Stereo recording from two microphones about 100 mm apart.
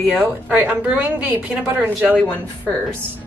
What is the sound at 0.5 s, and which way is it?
A woman's voice, 15° right (ahead or behind).